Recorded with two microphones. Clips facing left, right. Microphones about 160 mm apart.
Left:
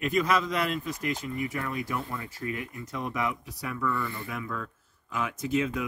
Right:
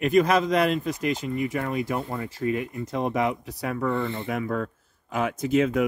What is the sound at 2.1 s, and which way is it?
Speech, 40° right (ahead or behind).